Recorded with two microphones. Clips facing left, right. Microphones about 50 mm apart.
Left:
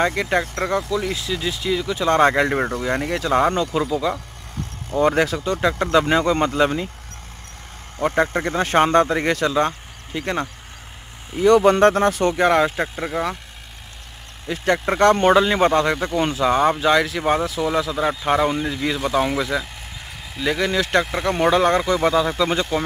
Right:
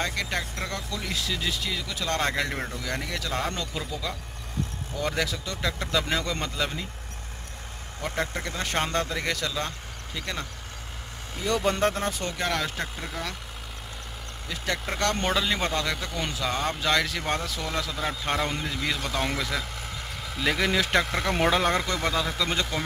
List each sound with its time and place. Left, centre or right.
0.0 s speech: left
0.8 s speech: centre; by 3.6 s left
4.9 s speech: left
6.5 s speech: left
8.0 s speech: left
11.4 s speech: left
14.5 s speech: left
16.9 s speech: centre